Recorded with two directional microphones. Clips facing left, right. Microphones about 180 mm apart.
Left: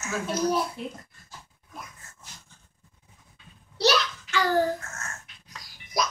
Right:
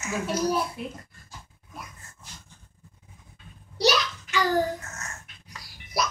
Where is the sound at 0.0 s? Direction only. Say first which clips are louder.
Even; 10° right (ahead or behind).